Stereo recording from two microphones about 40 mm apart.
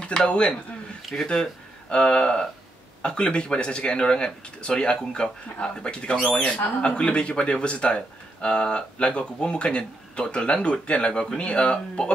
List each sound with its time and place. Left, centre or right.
0.0 s speech: left